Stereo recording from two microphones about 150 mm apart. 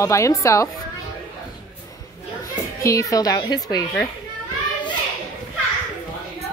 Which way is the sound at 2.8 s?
20° left (ahead or behind).